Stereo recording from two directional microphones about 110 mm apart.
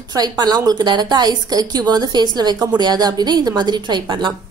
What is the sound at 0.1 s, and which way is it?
A woman's voice, 35° right (ahead or behind).